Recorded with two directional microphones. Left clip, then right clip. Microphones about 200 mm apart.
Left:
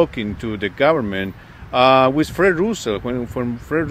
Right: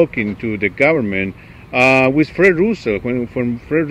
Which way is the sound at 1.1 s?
50° left (ahead or behind).